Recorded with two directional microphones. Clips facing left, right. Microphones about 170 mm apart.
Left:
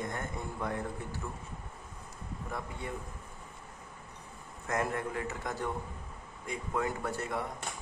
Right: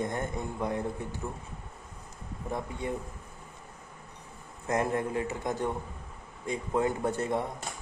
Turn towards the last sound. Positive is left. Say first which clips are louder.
# right 6 dB
turn(degrees=-25)  # may be behind; listen again after turning